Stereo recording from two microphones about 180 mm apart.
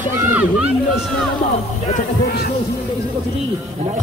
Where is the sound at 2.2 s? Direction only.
55° left (ahead or behind).